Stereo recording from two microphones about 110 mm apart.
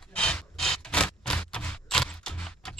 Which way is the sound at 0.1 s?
10° left (ahead or behind).